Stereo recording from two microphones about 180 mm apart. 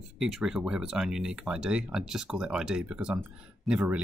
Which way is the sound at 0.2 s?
Centre (ahead or behind).